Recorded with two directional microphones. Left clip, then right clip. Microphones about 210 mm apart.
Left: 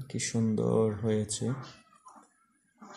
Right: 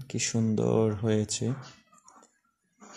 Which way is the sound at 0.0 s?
25° right (ahead or behind).